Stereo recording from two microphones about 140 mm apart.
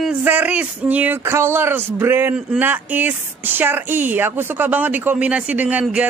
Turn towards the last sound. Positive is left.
turn(degrees=-10)  # may be behind; listen again after turning